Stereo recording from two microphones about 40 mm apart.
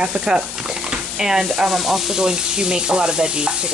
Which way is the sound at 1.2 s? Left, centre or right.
Centre.